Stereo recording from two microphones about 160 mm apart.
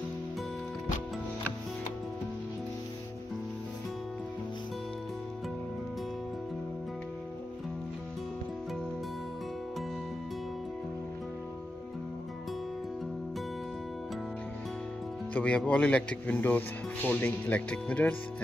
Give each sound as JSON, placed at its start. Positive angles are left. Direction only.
{"t": 15.3, "sound": "speech", "side_deg": 10}